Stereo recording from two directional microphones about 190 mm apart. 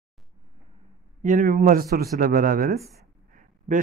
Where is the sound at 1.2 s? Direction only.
45° right (ahead or behind).